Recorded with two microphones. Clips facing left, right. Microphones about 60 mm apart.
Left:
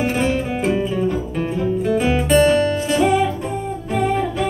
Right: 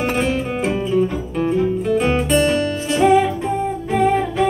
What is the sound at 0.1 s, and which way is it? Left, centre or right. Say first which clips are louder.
Music: even; centre.